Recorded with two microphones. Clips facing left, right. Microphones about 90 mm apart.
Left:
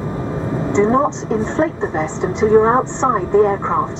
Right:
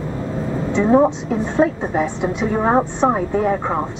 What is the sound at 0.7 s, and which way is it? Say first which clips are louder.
A woman's voice: right 1 dB; 25° left (ahead or behind).